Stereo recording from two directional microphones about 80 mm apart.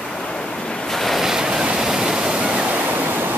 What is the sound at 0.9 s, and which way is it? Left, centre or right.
Waves, centre.